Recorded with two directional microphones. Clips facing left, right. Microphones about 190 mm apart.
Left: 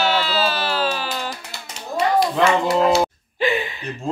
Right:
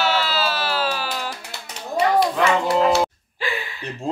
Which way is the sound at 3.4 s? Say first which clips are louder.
Left 7 dB; 20° left (ahead or behind).